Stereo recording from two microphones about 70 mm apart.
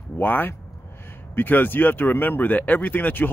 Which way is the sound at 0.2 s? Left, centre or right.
Left.